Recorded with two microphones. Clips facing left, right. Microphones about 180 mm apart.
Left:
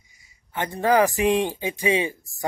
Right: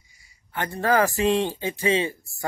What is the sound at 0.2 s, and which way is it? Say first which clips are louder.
Speech: left 1 dB; 20° left (ahead or behind).